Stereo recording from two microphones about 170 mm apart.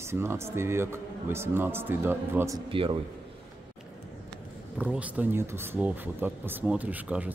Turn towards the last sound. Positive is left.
turn(degrees=-10)  # may be behind; listen again after turning